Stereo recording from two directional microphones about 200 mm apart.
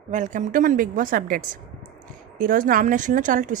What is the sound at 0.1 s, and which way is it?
A woman's voice, 40° right (ahead or behind).